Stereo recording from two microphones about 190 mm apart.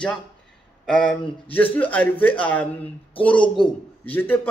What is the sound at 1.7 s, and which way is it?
Speech, 10° left (ahead or behind).